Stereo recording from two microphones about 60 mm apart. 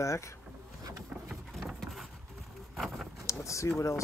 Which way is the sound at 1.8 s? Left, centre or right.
Centre.